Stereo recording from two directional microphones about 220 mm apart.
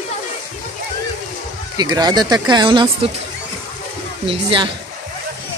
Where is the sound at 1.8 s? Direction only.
20° right (ahead or behind).